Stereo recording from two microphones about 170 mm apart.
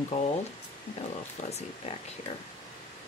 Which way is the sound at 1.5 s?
40° left (ahead or behind).